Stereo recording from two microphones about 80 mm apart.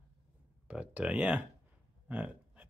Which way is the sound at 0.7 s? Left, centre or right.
Centre.